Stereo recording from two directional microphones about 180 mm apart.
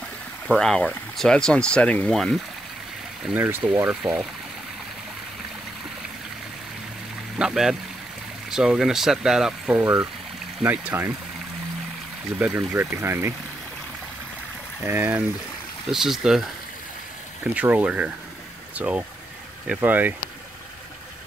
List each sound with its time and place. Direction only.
0.5 s speech: 5° left (ahead or behind)
3.3 s speech: 5° right (ahead or behind)
7.3 s speech: 5° right (ahead or behind)
12.4 s speech: 10° right (ahead or behind)
14.8 s speech: 10° right (ahead or behind)
17.6 s speech: 10° right (ahead or behind)